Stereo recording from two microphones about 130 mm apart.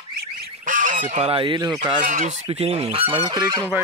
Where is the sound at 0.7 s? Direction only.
90° right; by 1.6 s 40° right (ahead or behind).